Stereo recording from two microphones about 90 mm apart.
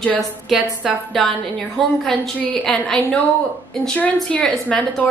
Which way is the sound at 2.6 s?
10° left (ahead or behind).